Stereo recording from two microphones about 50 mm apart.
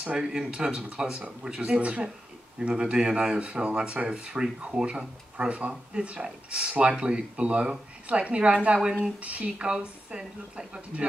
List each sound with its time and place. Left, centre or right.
0.0 s speech: centre